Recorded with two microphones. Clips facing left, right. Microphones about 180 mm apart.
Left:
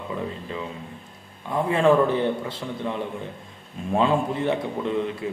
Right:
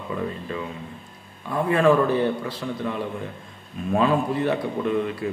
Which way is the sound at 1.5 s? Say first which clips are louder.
Even; 20° left (ahead or behind).